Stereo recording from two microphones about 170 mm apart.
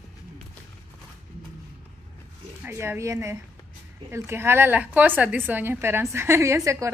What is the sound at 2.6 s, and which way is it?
A woman's voice, 15° right (ahead or behind).